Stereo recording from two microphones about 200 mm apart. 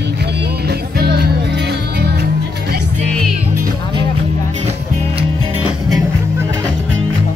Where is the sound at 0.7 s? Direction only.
55° right (ahead or behind).